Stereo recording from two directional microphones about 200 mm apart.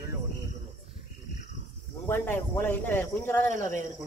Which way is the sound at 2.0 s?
10° left (ahead or behind).